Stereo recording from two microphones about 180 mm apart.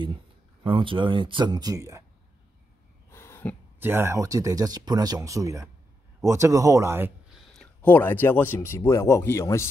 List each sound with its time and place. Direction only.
0.7 s speech: 30° right (ahead or behind)
3.1 s a sound: 15° left (ahead or behind)
3.8 s speech: 15° right (ahead or behind)
7.5 s speech: 10° left (ahead or behind)